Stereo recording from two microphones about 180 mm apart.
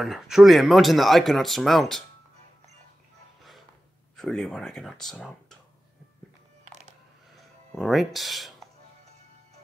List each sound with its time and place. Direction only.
0.0 s speech: centre (ahead or behind)
4.2 s speech: 5° left (ahead or behind)
6.7 s a sound: 40° right (ahead or behind)
7.3 s music: centre (ahead or behind)